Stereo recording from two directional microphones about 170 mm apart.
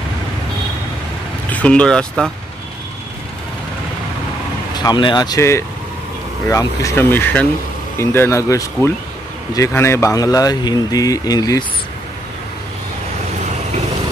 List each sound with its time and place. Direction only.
1.5 s speech: 5° left (ahead or behind)
4.7 s speech: 25° left (ahead or behind)
9.8 s speech: 15° left (ahead or behind)